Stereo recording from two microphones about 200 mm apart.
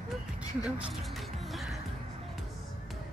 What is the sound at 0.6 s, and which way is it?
Music, 5° right (ahead or behind).